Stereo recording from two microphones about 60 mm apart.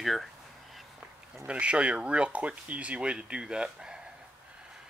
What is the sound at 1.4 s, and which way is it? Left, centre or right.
Speech, centre.